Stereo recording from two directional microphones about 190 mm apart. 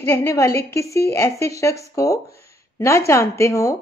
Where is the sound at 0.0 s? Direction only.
15° left (ahead or behind).